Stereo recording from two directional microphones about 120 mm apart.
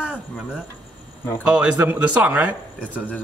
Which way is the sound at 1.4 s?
10° right (ahead or behind).